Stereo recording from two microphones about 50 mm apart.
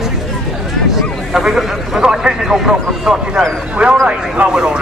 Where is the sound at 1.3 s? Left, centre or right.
Centre.